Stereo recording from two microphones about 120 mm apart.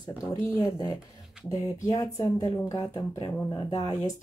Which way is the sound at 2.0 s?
30° left (ahead or behind).